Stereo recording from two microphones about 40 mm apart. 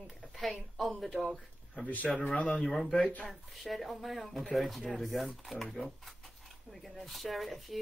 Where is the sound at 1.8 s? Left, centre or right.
Left.